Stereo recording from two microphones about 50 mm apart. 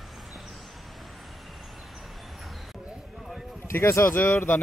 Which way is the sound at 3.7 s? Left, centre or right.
Left.